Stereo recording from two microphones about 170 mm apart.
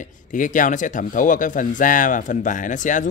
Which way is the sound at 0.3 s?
50° left (ahead or behind).